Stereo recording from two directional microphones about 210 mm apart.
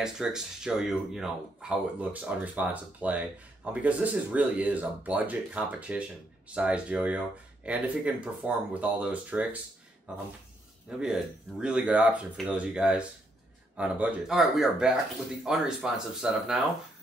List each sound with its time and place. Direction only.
0.0 s speech: 5° right (ahead or behind)